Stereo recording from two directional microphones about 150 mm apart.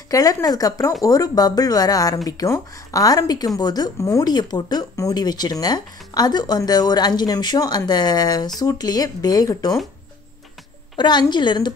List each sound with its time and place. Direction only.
0.1 s a woman's voice: 25° left (ahead or behind)
11.0 s a woman's voice: 30° left (ahead or behind)